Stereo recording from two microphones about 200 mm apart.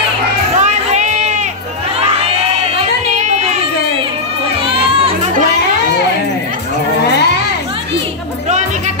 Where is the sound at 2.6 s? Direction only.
35° right (ahead or behind).